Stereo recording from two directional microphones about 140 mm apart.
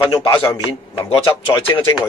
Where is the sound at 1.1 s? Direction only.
40° left (ahead or behind).